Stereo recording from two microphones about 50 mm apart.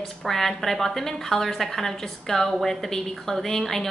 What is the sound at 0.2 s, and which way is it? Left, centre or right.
A woman's voice, centre.